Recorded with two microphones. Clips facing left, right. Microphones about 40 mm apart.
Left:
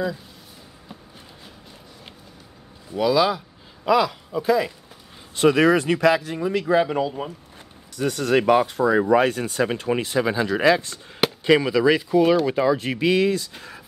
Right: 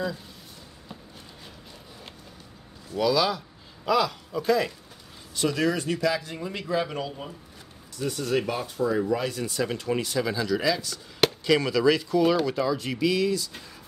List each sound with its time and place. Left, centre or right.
2.9 s speech: centre
5.3 s speech: left
6.8 s speech: left
7.9 s speech: left
9.0 s speech: left
11.4 s speech: left